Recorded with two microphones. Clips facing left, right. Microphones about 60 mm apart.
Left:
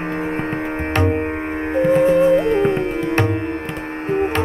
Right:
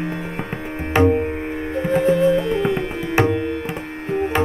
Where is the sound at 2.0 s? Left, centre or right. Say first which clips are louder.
Even; left.